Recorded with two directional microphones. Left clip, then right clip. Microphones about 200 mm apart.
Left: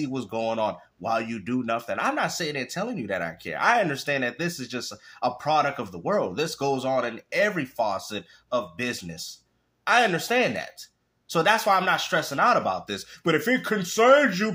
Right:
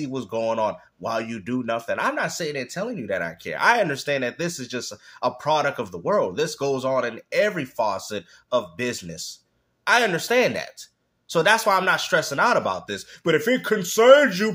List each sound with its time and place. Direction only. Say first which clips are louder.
0.0 s speech: right 2 dB; 10° right (ahead or behind)